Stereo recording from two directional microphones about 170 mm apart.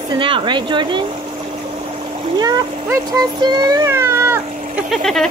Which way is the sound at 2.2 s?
25° right (ahead or behind).